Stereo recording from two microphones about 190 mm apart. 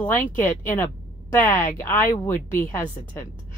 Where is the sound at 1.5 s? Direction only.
45° left (ahead or behind).